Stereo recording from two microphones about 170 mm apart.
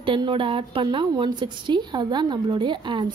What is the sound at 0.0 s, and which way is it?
A woman's voice, 30° right (ahead or behind).